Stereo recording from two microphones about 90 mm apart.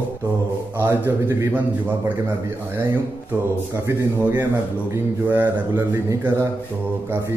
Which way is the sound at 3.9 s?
20° right (ahead or behind).